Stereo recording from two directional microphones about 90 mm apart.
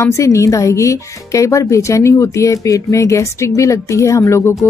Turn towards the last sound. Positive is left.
turn(degrees=30)  # may be behind; listen again after turning